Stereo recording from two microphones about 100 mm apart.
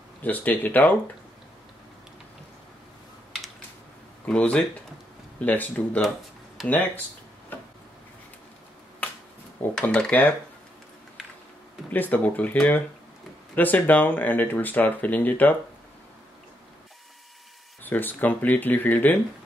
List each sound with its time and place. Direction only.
0.2 s speech: 15° left (ahead or behind)
4.3 s speech: 10° left (ahead or behind)
6.6 s speech: centre (ahead or behind)
7.5 s a sound: 20° left (ahead or behind)
9.0 s finger snapping: 15° left (ahead or behind)
9.8 s speech: 10° left (ahead or behind)
11.9 s speech: 15° left (ahead or behind)
17.8 s speech: 20° left (ahead or behind)